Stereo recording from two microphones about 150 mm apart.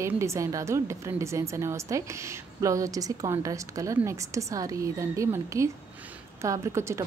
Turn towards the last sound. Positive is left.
turn(degrees=-20)  # may be behind; listen again after turning